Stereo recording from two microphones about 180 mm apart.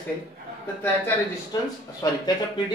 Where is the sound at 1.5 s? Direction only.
20° left (ahead or behind).